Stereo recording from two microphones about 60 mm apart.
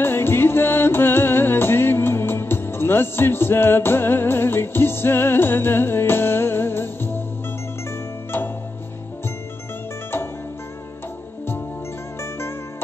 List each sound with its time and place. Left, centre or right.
0.0 s music: left
12.2 s music: left